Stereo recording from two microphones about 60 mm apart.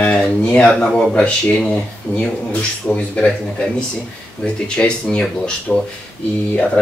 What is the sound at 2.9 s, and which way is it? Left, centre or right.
Speech, centre.